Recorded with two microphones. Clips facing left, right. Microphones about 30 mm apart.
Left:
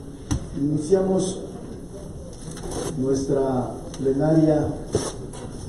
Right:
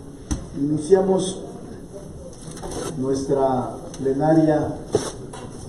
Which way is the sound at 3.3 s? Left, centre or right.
Centre.